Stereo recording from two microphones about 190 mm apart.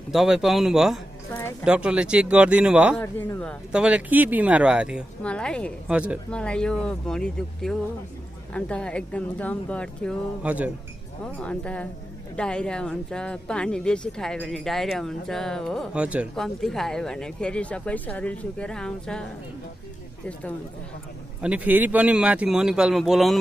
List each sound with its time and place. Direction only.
0.1 s speech: centre (ahead or behind)
3.0 s speech: 10° left (ahead or behind)
3.7 s speech: 5° right (ahead or behind)
5.2 s speech: 5° left (ahead or behind)
5.9 s speech: 5° right (ahead or behind)
6.3 s speech: 5° left (ahead or behind)
10.4 s speech: 10° right (ahead or behind)
11.3 s speech: 5° left (ahead or behind)
21.4 s speech: 5° right (ahead or behind)